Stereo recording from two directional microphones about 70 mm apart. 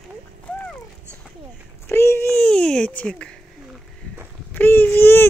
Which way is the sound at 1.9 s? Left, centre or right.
Left.